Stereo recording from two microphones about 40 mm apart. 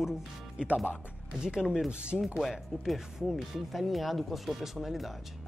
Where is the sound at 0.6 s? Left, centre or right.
Right.